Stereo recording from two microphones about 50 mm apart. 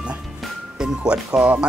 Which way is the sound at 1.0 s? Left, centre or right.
Right.